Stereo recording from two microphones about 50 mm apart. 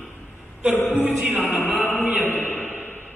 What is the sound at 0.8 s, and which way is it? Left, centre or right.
A man's voice, left.